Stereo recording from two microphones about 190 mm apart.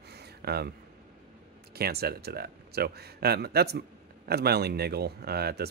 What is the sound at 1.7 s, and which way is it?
Speech, 55° right (ahead or behind).